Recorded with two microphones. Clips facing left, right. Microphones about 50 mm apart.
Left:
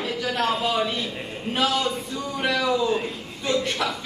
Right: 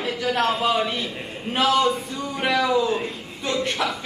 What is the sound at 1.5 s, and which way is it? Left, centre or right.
A man's voice, centre.